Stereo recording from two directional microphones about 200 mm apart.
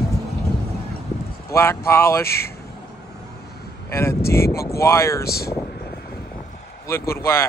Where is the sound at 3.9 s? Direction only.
15° left (ahead or behind).